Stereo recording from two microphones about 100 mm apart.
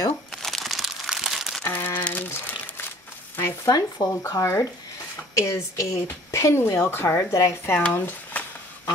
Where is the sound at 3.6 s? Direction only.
40° left (ahead or behind).